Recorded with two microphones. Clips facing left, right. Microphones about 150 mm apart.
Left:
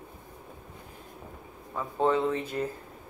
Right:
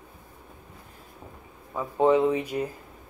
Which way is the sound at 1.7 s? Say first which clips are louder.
Right 5 dB; 10° right (ahead or behind).